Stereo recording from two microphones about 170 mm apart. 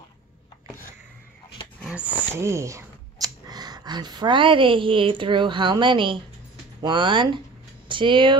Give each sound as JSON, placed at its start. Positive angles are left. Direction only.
{"t": 2.3, "sound": "speech", "side_deg": -15}